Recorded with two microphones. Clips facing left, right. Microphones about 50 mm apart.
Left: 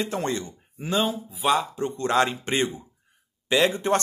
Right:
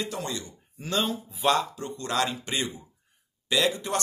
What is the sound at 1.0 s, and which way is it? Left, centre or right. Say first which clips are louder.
Speech: right 1 dB; centre.